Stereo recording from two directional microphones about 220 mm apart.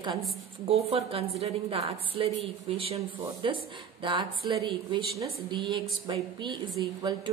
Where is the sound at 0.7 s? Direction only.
25° right (ahead or behind).